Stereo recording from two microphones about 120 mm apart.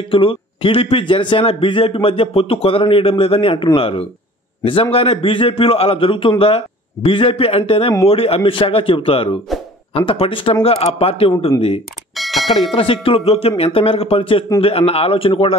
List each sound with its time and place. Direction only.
0.1 s a man's voice: 45° left (ahead or behind)
12.2 s bell: centre (ahead or behind)
12.7 s a man's voice: 50° left (ahead or behind)